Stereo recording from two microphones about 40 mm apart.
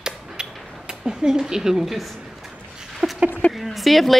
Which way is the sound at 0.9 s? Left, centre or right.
Centre.